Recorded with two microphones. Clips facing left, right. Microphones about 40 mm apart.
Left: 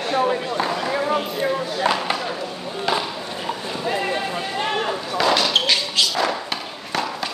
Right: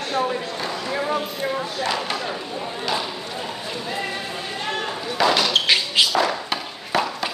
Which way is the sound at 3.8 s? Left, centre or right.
Centre.